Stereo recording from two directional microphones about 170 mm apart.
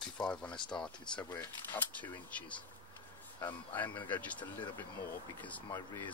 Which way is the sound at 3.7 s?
10° left (ahead or behind).